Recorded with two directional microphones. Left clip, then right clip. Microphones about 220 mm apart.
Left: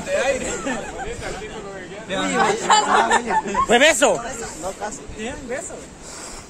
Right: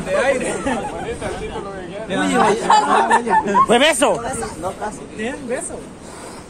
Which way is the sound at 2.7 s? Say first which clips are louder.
Right 1 dB; 15° right (ahead or behind).